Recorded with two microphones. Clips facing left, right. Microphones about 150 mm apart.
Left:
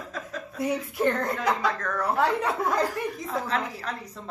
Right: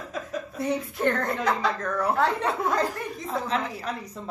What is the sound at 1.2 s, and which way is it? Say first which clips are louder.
Speech: even; 5° left (ahead or behind).